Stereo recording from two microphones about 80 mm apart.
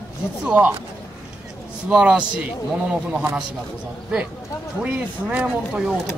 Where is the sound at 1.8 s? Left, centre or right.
Centre.